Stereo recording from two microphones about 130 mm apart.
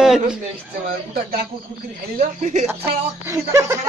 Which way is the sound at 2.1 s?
70° right (ahead or behind).